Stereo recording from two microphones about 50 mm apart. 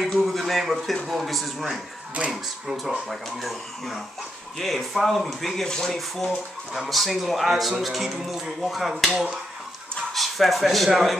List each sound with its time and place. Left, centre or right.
0.0 s speech: centre
10.1 s speech: centre